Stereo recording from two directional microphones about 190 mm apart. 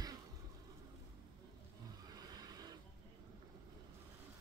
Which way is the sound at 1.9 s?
20° right (ahead or behind).